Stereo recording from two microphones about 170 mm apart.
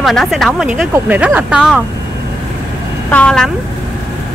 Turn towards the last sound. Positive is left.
turn(degrees=5)  # may be behind; listen again after turning